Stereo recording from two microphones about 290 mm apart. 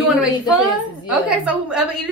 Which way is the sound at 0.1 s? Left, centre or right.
Centre.